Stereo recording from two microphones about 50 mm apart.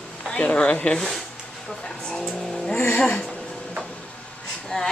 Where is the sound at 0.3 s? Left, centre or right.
Left.